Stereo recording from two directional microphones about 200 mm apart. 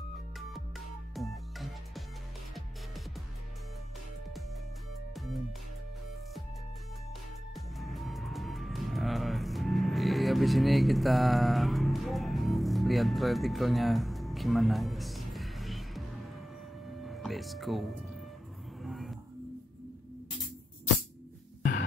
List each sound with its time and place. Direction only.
0.4 s music: centre (ahead or behind)
5.1 s music: centre (ahead or behind)
7.5 s music: centre (ahead or behind)
17.0 s speech: centre (ahead or behind)
18.8 s music: centre (ahead or behind)